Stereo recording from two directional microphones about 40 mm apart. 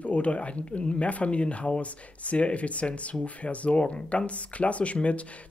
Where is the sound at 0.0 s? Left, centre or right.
Left.